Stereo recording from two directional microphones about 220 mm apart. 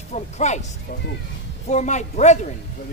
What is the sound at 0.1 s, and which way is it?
Speech, 30° left (ahead or behind).